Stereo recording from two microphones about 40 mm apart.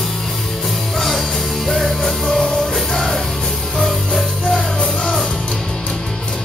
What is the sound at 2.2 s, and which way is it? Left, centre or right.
Music, centre.